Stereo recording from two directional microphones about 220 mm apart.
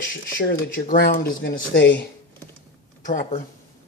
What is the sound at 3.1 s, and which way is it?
Speech, 35° left (ahead or behind).